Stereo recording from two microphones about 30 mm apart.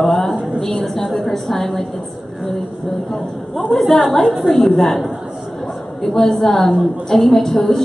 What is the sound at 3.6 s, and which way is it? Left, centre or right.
Speech, centre.